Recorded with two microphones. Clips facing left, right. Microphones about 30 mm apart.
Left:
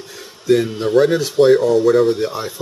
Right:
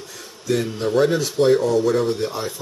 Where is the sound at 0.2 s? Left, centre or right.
Centre.